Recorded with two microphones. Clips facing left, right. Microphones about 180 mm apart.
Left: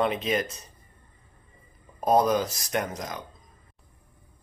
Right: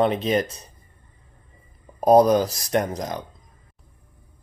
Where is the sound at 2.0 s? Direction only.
35° right (ahead or behind).